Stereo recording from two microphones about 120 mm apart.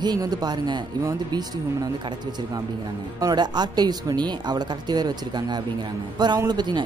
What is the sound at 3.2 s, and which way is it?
Speech, 35° right (ahead or behind).